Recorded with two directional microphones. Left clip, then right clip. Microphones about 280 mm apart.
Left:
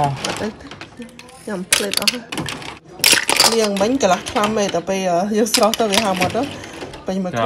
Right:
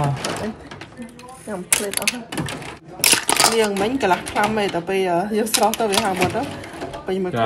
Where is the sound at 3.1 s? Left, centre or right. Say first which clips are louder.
Left 3 dB; centre.